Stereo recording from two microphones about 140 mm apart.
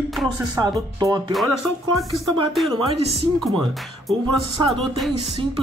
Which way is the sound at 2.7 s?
45° right (ahead or behind).